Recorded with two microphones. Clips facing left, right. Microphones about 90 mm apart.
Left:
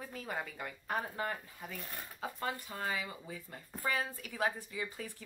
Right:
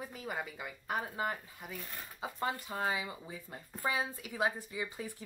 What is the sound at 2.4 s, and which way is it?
Speech, 20° right (ahead or behind).